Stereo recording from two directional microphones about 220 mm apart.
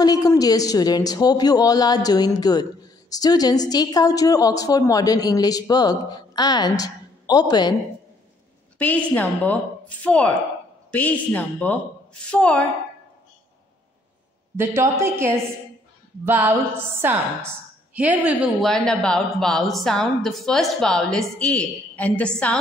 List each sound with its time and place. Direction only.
0.0 s a woman's voice: 15° left (ahead or behind)
8.7 s a woman's voice: 5° left (ahead or behind)
14.6 s a woman's voice: 10° right (ahead or behind); by 22.3 s 5° left (ahead or behind)